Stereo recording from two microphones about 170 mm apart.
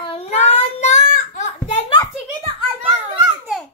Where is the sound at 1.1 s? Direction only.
50° left (ahead or behind).